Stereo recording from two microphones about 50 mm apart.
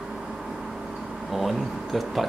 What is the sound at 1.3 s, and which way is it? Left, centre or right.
Speech, centre.